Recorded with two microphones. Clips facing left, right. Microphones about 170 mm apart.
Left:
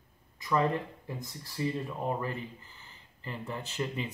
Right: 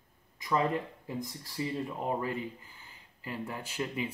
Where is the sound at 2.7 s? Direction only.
10° right (ahead or behind).